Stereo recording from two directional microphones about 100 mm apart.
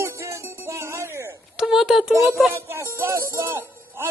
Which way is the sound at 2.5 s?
20° right (ahead or behind).